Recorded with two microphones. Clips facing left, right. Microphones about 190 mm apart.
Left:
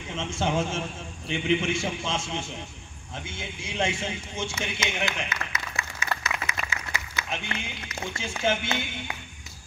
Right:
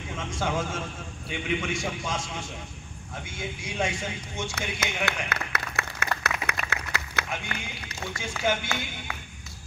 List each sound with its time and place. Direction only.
0.1 s a man's voice: 25° left (ahead or behind)
4.6 s clapping: 65° right (ahead or behind)
6.7 s a sound: 65° right (ahead or behind)
7.2 s a man's voice: 25° left (ahead or behind)